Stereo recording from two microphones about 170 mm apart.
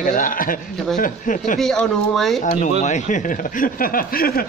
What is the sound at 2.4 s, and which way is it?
Speech, 40° left (ahead or behind).